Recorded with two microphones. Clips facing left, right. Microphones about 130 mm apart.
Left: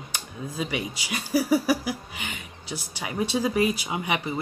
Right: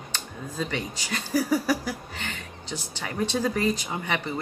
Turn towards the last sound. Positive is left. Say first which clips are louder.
# left 2 dB
turn(degrees=10)  # may be behind; listen again after turning